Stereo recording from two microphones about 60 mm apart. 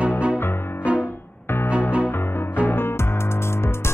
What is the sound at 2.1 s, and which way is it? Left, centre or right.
Music, left.